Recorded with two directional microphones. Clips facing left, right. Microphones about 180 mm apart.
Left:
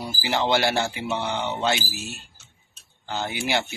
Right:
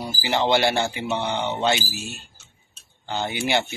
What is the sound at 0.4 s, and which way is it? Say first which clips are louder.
Speech: right 2 dB; 5° left (ahead or behind).